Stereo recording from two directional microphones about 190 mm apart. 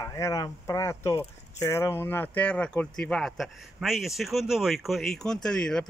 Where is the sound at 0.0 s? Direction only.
15° left (ahead or behind).